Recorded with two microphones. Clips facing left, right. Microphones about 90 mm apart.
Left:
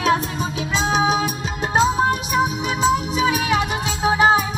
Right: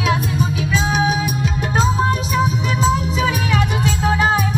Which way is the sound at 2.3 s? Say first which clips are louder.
Right 1 dB; 10° left (ahead or behind).